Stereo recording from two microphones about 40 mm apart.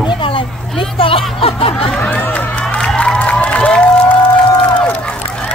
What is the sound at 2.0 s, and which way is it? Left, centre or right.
Speech, left.